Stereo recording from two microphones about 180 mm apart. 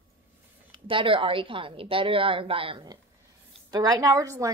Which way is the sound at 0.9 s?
30° right (ahead or behind).